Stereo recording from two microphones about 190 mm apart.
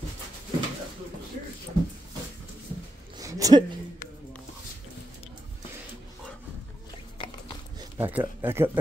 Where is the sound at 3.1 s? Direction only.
20° right (ahead or behind).